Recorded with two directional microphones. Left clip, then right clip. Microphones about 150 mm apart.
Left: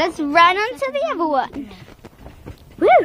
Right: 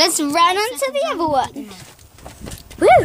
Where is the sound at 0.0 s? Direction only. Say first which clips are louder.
Left 1 dB; 20° right (ahead or behind).